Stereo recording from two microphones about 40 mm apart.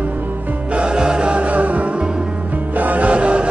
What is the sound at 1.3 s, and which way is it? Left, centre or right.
Music, right.